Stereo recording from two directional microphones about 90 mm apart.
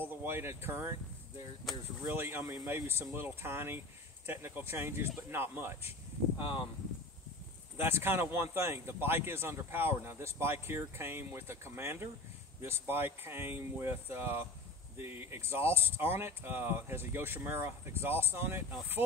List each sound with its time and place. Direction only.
0.0 s speech: 25° right (ahead or behind)
2.1 s speech: 25° right (ahead or behind)
7.7 s speech: 25° right (ahead or behind)